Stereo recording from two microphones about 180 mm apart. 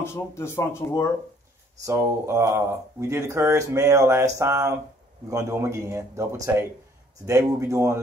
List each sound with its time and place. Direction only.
0.0 s speech: 15° left (ahead or behind)
1.9 s speech: 15° right (ahead or behind)